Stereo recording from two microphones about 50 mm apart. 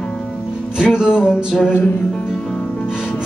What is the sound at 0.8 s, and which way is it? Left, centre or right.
Music, centre.